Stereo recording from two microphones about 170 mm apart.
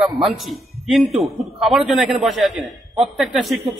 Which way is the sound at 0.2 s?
Centre (ahead or behind).